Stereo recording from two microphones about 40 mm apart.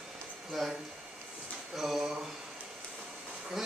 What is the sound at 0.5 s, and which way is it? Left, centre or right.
Speech, centre.